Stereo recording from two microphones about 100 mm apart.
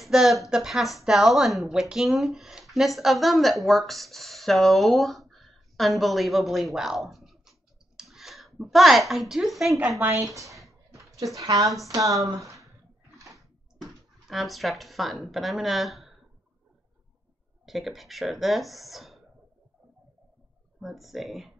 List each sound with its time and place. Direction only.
0.0 s a woman's voice: centre (ahead or behind)
9.8 s speech: 15° right (ahead or behind)
10.2 s speech: 35° right (ahead or behind)
12.6 s a sound: 30° right (ahead or behind)
14.2 s a woman's voice: centre (ahead or behind)
17.6 s a woman's voice: centre (ahead or behind)
20.8 s a woman's voice: centre (ahead or behind)